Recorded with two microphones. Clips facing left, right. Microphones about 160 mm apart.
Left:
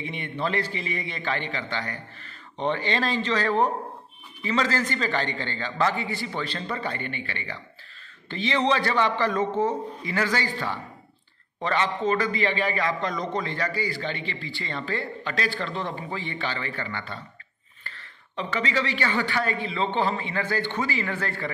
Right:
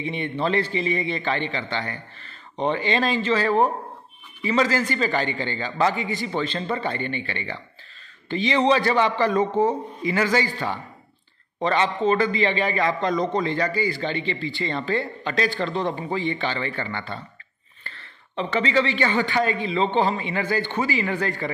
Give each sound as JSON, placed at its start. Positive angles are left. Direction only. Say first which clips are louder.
{"t": 0.0, "sound": "a man's voice", "louder": "right 4 dB", "side_deg": -25}
{"t": 2.5, "sound": "a man's voice", "louder": "right 3 dB", "side_deg": -15}
{"t": 8.3, "sound": "a man's voice", "louder": "right 4 dB", "side_deg": -10}
{"t": 11.6, "sound": "a man's voice", "louder": "right 4 dB", "side_deg": -20}